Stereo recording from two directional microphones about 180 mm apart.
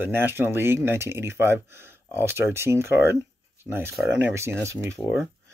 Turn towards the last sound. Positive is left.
turn(degrees=-15)  # may be behind; listen again after turning